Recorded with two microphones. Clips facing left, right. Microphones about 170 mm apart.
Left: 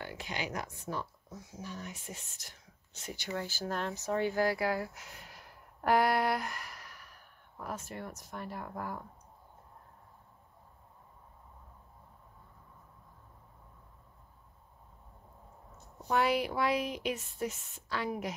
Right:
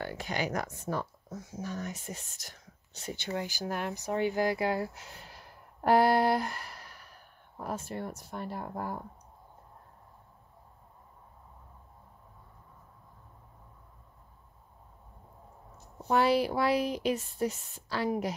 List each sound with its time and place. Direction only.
0.0 s speech: 45° right (ahead or behind)
3.3 s speech: 15° right (ahead or behind); by 9.0 s 30° right (ahead or behind)
16.1 s a woman's voice: 35° right (ahead or behind)